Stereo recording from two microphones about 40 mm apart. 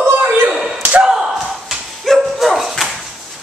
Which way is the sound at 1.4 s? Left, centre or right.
Centre.